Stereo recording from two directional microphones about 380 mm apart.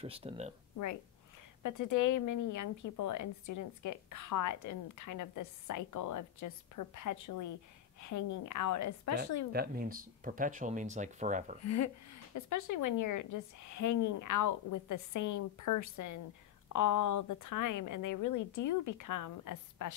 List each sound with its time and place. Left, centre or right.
0.0 s speech: centre
1.6 s a woman's voice: left
9.5 s speech: right
11.6 s a woman's voice: left